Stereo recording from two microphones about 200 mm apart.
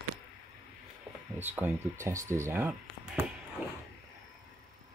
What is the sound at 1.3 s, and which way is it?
Speech, 10° right (ahead or behind).